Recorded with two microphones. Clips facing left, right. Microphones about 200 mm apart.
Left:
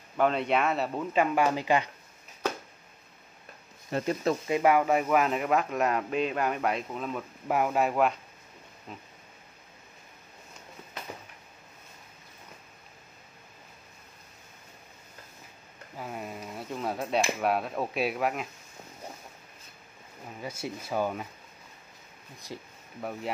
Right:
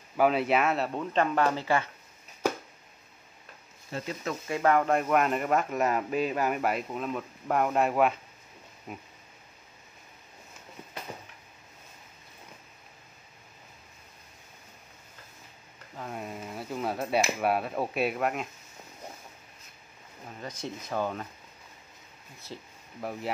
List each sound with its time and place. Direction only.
0.2 s speech: 5° right (ahead or behind); by 1.9 s 15° left (ahead or behind)
3.9 s speech: 50° left (ahead or behind)
4.5 s speech: 15° left (ahead or behind)
8.9 s a sound: 10° right (ahead or behind)
16.0 s a sound: centre (ahead or behind)
20.3 s speech: 10° left (ahead or behind)
22.5 s speech: 15° left (ahead or behind)
22.9 s speech: centre (ahead or behind)